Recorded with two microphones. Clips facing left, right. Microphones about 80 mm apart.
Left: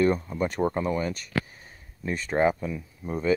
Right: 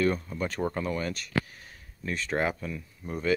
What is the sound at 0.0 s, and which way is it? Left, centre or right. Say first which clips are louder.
Speech: left 4 dB; centre.